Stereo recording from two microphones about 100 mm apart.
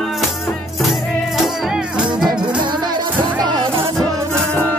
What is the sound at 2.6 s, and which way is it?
Music, 45° right (ahead or behind).